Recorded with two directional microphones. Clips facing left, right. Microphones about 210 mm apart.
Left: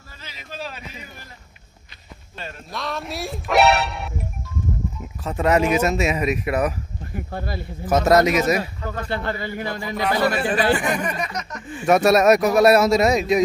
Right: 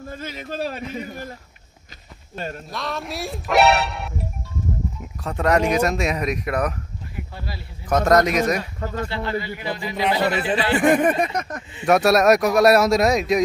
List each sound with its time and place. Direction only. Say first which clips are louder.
0.1 s a man's voice: right 7 dB; 50° right (ahead or behind)
2.7 s speech: left 4 dB; centre (ahead or behind)
7.1 s speech: left 7 dB; 50° left (ahead or behind)
7.8 s speech: left 1 dB; 5° left (ahead or behind)
8.9 s speech: right 1 dB; 50° left (ahead or behind)
9.9 s speech: even; 20° right (ahead or behind)
10.9 s speech: right 7 dB; 55° right (ahead or behind)
11.8 s speech: left 1 dB; centre (ahead or behind)